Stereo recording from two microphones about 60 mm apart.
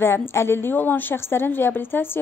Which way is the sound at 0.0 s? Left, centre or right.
Left.